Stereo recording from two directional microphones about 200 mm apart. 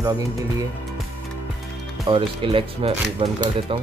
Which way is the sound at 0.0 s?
15° right (ahead or behind).